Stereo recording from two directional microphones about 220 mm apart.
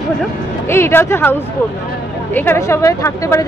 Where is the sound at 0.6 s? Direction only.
10° left (ahead or behind).